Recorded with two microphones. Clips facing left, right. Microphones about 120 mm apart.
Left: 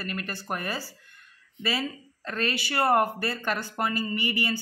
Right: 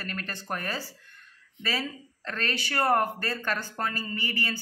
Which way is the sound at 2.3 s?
10° left (ahead or behind).